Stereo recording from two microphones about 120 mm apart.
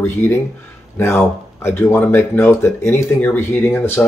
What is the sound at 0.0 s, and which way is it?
Speech, 15° left (ahead or behind).